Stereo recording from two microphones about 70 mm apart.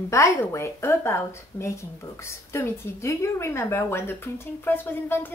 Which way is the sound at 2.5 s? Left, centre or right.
Left.